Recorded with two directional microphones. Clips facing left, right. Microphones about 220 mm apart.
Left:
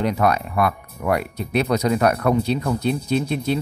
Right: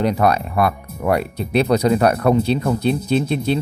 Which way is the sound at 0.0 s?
35° right (ahead or behind).